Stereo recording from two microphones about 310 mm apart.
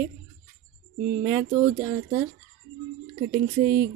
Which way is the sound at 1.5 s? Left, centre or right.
Right.